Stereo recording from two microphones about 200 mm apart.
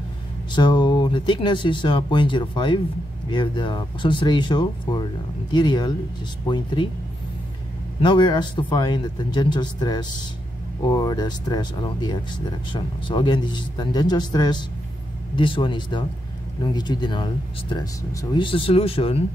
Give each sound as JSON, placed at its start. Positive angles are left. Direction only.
{"t": 0.6, "sound": "speech", "side_deg": 20}
{"t": 8.0, "sound": "speech", "side_deg": 20}
{"t": 18.3, "sound": "speech", "side_deg": 25}